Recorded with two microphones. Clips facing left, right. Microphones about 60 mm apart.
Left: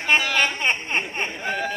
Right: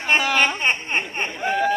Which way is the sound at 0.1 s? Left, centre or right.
Centre.